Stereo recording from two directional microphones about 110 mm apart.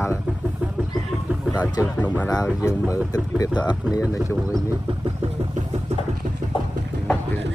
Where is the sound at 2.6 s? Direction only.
30° left (ahead or behind).